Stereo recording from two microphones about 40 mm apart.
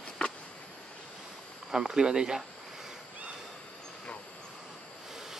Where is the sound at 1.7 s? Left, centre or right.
Centre.